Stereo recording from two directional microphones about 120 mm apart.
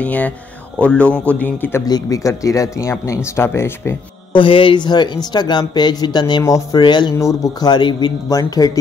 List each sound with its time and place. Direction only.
0.0 s speech: 10° left (ahead or behind)
1.9 s speech: 30° left (ahead or behind)
4.3 s speech: 45° left (ahead or behind)